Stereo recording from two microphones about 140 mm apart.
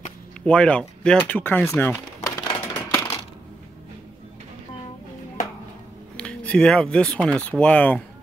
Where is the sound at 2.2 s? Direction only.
25° left (ahead or behind).